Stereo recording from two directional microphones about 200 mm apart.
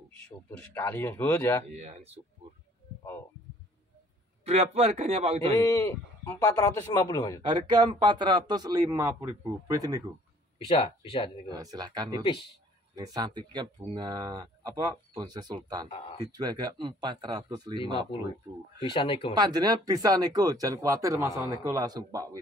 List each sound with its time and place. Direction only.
0.7 s a man's voice: 10° left (ahead or behind)
1.8 s speech: 35° right (ahead or behind)
4.5 s speech: 30° right (ahead or behind)
5.5 s a man's voice: 15° left (ahead or behind)
7.4 s speech: 20° right (ahead or behind)
10.8 s speech: 25° left (ahead or behind)
11.5 s speech: 20° right (ahead or behind)
18.9 s speech: 25° left (ahead or behind)
19.3 s speech: 20° right (ahead or behind)